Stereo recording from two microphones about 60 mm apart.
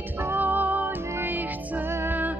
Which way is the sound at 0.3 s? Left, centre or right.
Right.